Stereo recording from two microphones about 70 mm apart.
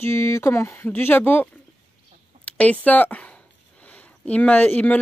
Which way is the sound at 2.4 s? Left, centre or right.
Centre.